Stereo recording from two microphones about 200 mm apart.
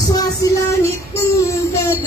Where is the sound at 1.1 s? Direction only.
15° left (ahead or behind).